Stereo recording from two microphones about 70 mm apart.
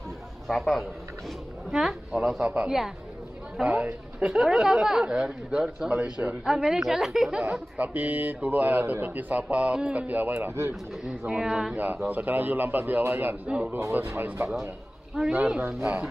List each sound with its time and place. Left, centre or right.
0.5 s speech: centre
2.4 s a man's voice: right
3.7 s speech: centre
4.3 s speech: centre
7.5 s a man's voice: centre; by 10.7 s right
11.1 s speech: centre
11.7 s a man's voice: right
13.9 s speech: right
15.2 s speech: centre
15.6 s a man's voice: right